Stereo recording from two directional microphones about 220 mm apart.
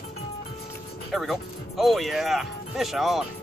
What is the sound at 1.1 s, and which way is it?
Music, centre (ahead or behind).